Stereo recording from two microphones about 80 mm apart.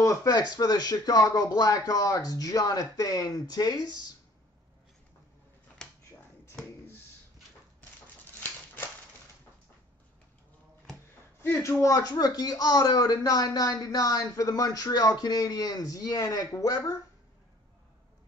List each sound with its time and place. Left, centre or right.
0.0 s a sound: left
0.3 s speech: left
5.8 s finger snapping: centre
11.8 s speech: left